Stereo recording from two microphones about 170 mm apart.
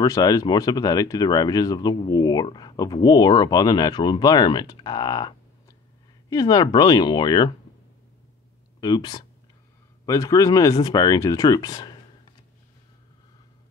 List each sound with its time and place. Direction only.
0.0 s speech: 20° left (ahead or behind)
8.8 s speech: 25° left (ahead or behind)